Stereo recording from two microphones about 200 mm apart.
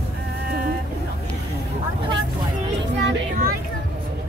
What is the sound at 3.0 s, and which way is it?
Music, 50° right (ahead or behind).